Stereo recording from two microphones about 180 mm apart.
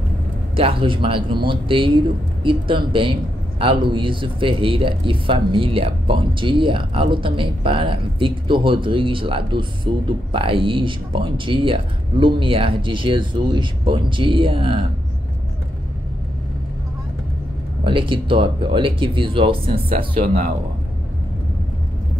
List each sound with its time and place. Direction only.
0.6 s speech: 30° right (ahead or behind)
17.8 s speech: 30° right (ahead or behind)